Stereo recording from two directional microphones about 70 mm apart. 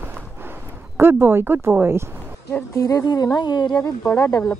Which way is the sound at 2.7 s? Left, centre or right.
Left.